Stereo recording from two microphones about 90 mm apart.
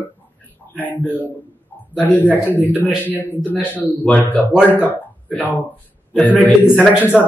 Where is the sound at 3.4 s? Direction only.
20° left (ahead or behind).